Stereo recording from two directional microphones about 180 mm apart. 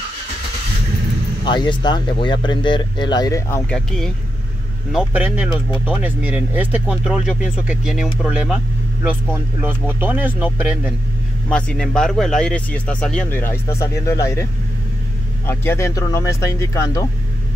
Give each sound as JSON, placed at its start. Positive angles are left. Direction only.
{"t": 1.4, "sound": "speech", "side_deg": 25}
{"t": 4.9, "sound": "speech", "side_deg": -5}
{"t": 11.4, "sound": "speech", "side_deg": 5}